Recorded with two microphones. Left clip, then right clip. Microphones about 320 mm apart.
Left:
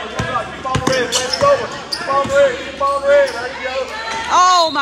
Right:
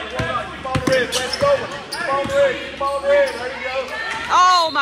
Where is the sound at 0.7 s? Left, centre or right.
Centre.